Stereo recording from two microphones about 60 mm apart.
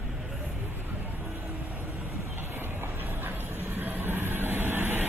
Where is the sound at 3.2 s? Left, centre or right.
Right.